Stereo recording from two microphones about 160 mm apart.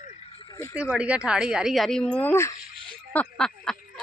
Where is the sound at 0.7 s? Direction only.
5° right (ahead or behind); by 2.5 s 15° left (ahead or behind).